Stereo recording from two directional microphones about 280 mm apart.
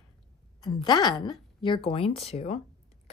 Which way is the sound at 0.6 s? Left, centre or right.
Centre.